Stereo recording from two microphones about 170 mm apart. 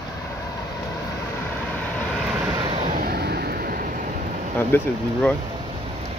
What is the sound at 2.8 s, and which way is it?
Vehicle, 60° right (ahead or behind).